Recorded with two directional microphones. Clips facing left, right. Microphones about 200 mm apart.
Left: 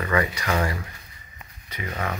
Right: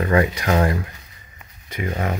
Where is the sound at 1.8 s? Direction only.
30° right (ahead or behind).